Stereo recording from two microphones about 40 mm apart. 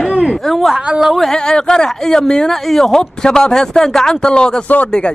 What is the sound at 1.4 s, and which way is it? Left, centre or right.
Speech, left.